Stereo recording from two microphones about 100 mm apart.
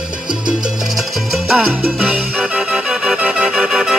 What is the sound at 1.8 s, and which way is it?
Salsa music, 10° right (ahead or behind).